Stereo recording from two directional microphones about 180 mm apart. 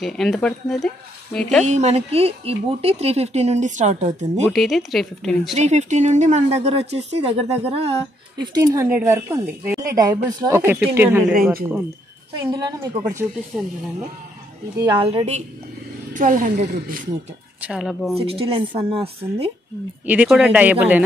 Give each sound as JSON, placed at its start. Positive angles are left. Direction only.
{"t": 0.0, "sound": "speech", "side_deg": 0}
{"t": 1.6, "sound": "speech", "side_deg": -40}
{"t": 4.5, "sound": "speech", "side_deg": 0}
{"t": 5.6, "sound": "speech", "side_deg": -40}
{"t": 12.4, "sound": "a woman's voice", "side_deg": -20}
{"t": 14.8, "sound": "a woman's voice", "side_deg": -25}
{"t": 16.1, "sound": "a woman's voice", "side_deg": -50}
{"t": 17.6, "sound": "speech", "side_deg": -5}
{"t": 18.1, "sound": "speech", "side_deg": -30}
{"t": 20.1, "sound": "speech", "side_deg": -5}